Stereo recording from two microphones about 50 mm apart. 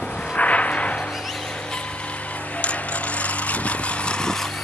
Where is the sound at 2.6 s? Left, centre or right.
Left.